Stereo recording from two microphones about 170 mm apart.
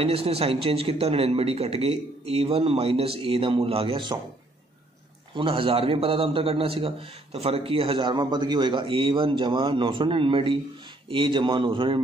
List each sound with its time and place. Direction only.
0.0 s a man's voice: 35° right (ahead or behind)
5.3 s a man's voice: 30° right (ahead or behind)